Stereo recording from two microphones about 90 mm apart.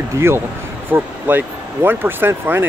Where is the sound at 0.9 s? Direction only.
25° right (ahead or behind).